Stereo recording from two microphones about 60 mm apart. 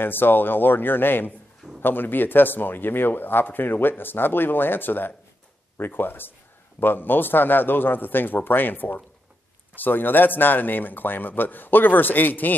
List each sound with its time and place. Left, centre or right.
0.0 s speech: left